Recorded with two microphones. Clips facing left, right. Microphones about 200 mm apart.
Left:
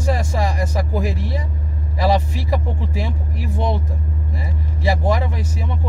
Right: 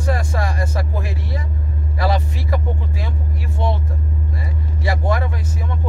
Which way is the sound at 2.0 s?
20° left (ahead or behind).